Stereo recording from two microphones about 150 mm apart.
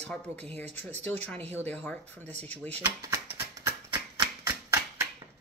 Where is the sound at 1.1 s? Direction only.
10° left (ahead or behind).